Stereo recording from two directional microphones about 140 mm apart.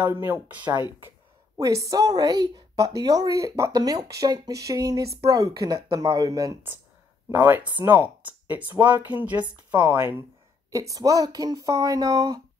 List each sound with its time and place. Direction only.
0.0 s speech: 15° right (ahead or behind)
1.6 s speech: 25° right (ahead or behind)
7.2 s speech: 15° right (ahead or behind)